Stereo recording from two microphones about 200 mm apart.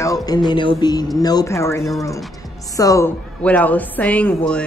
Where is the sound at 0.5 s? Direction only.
25° left (ahead or behind).